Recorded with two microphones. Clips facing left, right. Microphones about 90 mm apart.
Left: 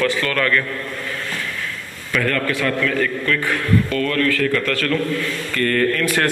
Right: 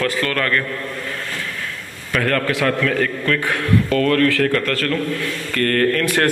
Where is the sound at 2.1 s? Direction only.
65° right (ahead or behind).